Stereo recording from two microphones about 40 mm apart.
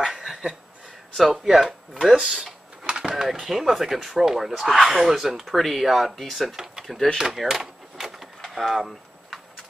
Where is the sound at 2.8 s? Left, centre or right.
Centre.